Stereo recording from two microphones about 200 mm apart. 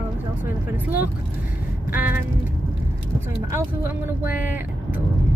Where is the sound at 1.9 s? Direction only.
10° right (ahead or behind).